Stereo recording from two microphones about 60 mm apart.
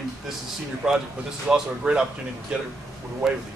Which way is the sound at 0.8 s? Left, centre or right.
Centre.